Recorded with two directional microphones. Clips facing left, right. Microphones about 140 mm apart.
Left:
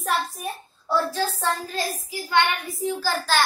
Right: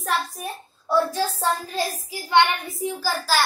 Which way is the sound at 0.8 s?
10° right (ahead or behind).